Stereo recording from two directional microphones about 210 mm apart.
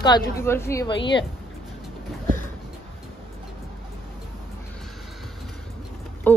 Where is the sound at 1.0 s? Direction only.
60° left (ahead or behind).